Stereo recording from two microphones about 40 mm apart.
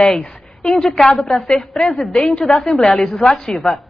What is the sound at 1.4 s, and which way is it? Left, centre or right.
A woman's voice, centre.